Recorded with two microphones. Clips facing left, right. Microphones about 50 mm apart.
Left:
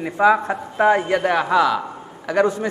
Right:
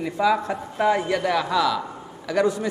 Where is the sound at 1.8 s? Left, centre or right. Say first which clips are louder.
Left 3 dB; left.